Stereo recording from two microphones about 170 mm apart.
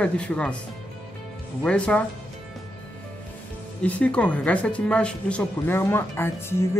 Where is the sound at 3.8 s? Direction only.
10° left (ahead or behind).